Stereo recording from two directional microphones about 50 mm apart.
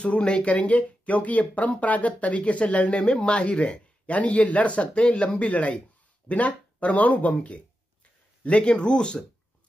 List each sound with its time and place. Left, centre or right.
0.0 s speech: left